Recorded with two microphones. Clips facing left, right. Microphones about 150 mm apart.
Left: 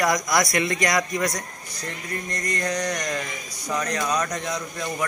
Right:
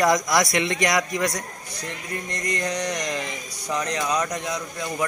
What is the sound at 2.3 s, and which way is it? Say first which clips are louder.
A man's voice: even; 20° right (ahead or behind).